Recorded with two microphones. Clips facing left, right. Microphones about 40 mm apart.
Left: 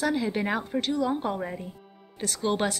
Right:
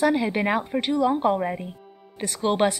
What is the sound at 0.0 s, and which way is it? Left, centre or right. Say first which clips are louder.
A woman's voice: right 5 dB; right.